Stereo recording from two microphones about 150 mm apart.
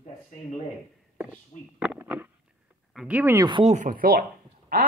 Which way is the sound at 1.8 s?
10° right (ahead or behind).